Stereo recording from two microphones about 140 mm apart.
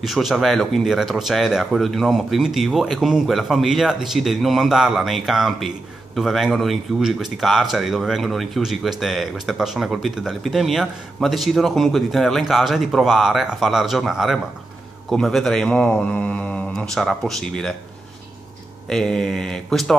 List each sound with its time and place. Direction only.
0.0 s speech: centre (ahead or behind)
18.9 s speech: 5° left (ahead or behind)